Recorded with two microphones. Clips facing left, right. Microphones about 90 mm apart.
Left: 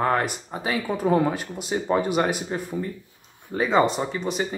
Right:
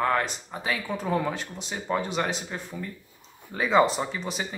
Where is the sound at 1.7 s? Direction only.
30° left (ahead or behind).